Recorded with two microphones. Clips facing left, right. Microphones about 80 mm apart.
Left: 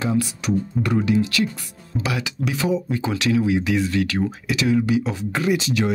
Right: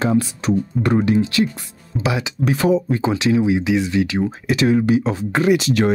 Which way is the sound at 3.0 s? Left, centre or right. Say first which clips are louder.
Right 3 dB; right.